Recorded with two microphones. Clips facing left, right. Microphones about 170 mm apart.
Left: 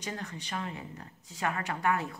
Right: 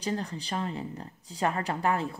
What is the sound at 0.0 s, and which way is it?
Speech, 35° right (ahead or behind).